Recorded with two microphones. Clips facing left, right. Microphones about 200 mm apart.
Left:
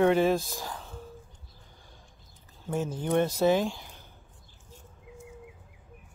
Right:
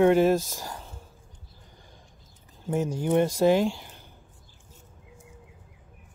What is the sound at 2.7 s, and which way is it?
Speech, 10° right (ahead or behind).